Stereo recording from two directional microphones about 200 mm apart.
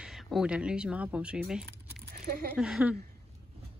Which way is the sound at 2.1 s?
50° right (ahead or behind).